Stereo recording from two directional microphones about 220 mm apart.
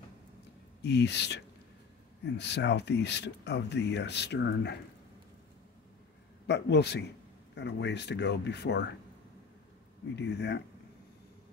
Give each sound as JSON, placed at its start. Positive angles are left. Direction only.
{"t": 0.8, "sound": "speech", "side_deg": 50}
{"t": 6.4, "sound": "speech", "side_deg": 50}
{"t": 10.1, "sound": "speech", "side_deg": 50}